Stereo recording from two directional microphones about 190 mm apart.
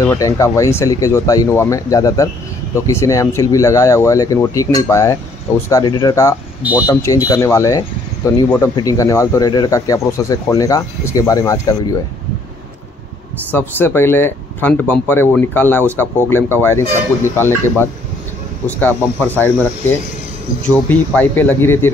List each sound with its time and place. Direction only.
0.0 s speech: 15° left (ahead or behind)
6.6 s speech: 10° right (ahead or behind)
6.9 s speech: 15° left (ahead or behind)
13.5 s speech: 10° left (ahead or behind)